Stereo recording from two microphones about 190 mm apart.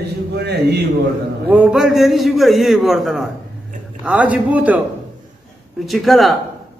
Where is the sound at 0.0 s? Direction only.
60° right (ahead or behind).